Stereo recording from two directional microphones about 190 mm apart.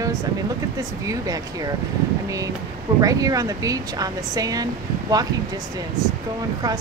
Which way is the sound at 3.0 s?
20° right (ahead or behind).